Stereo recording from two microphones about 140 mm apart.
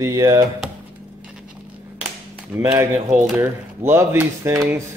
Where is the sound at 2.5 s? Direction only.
15° right (ahead or behind).